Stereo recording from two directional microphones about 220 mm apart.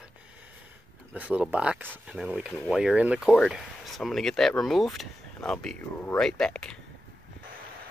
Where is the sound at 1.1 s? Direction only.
5° right (ahead or behind).